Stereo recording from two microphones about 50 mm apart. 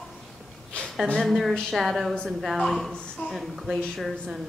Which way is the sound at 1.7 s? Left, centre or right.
Centre.